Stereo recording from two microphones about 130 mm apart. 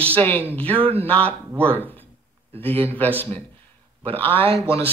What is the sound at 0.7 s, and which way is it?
Speech, 45° right (ahead or behind).